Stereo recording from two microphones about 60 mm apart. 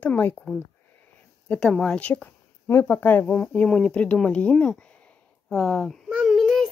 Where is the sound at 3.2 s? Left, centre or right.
Left.